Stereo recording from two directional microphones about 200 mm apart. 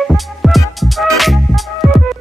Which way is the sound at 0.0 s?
Centre (ahead or behind).